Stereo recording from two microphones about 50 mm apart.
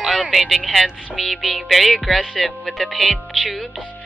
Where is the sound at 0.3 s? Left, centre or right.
Centre.